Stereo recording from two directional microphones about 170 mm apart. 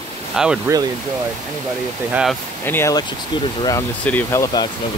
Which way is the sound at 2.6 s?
15° left (ahead or behind).